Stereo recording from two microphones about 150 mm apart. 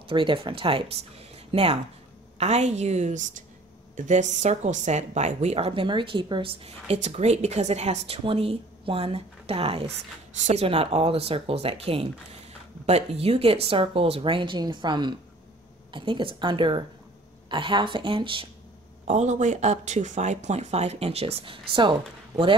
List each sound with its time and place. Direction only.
0.1 s a woman's voice: 35° right (ahead or behind)
19.0 s a woman's voice: 50° right (ahead or behind); by 21.9 s 35° right (ahead or behind)